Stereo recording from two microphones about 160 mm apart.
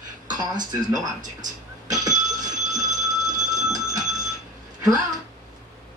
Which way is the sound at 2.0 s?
50° right (ahead or behind).